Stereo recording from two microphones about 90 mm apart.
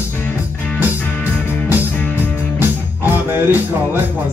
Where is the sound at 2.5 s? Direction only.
25° right (ahead or behind).